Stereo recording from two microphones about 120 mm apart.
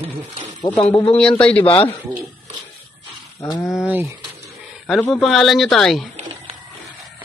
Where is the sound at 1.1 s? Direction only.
10° left (ahead or behind).